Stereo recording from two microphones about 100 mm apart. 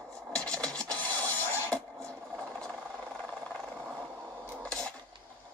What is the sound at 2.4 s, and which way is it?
Vehicle, 5° left (ahead or behind).